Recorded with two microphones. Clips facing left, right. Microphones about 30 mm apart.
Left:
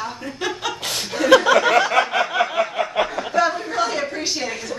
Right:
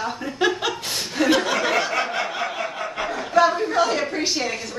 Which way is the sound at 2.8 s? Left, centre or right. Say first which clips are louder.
Left 6 dB; left.